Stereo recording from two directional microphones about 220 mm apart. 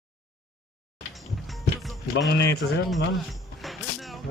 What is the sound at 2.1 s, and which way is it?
Speech, 50° left (ahead or behind).